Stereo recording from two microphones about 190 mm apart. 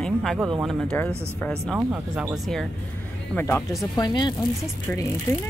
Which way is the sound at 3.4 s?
10° left (ahead or behind).